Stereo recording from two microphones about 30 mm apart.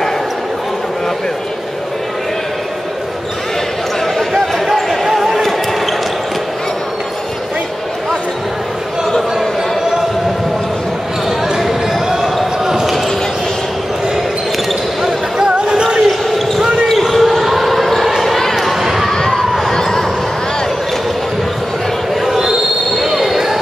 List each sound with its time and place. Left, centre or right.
5.0 s basketball bounce: centre
11.2 s basketball bounce: centre
15.3 s basketball bounce: right
16.8 s basketball bounce: centre
18.6 s run: centre
19.1 s a sound: centre
22.2 s train: centre
23.0 s basketball bounce: centre
23.3 s a sound: centre